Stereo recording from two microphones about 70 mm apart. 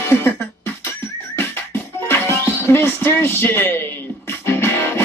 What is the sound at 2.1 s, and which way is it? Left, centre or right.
Music, left.